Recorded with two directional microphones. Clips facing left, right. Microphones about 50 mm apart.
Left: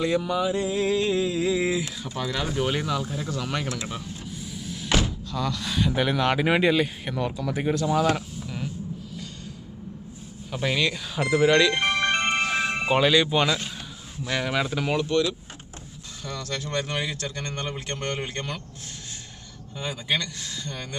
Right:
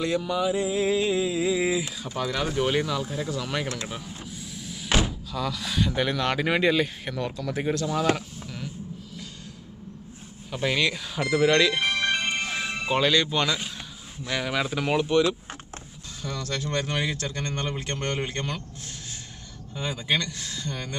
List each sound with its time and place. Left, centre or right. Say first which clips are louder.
0.0 s speech: left 1 dB; centre
3.8 s door: left 1 dB; centre
4.9 s speech: even; centre
10.5 s speech: even; centre
11.8 s music: left 2 dB; left
12.8 s speech: left 2 dB; centre
14.3 s speech: left 1 dB; centre
15.0 s speech: right 2 dB; centre
16.2 s speech: right 1 dB; centre
19.8 s speech: right 1 dB; centre